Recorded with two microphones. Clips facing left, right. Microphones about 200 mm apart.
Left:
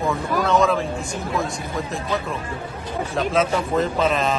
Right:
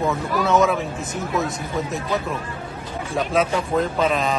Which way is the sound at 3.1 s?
Centre (ahead or behind).